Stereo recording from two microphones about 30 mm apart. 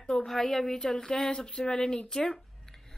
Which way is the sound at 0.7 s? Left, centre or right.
Left.